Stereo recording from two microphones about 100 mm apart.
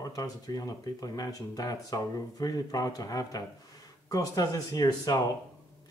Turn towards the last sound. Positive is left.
turn(degrees=40)  # may be behind; listen again after turning